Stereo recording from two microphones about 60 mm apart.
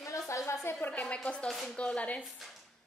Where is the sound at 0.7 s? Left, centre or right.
Left.